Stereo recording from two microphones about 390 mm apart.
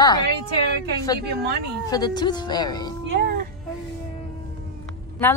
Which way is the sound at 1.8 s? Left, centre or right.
Centre.